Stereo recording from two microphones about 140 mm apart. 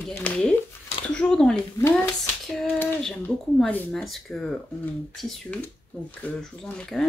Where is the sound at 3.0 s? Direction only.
10° left (ahead or behind).